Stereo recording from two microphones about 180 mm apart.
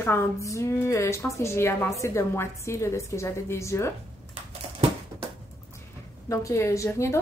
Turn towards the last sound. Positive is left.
turn(degrees=15)  # may be behind; listen again after turning